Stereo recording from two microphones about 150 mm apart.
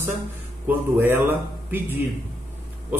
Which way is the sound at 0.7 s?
15° right (ahead or behind).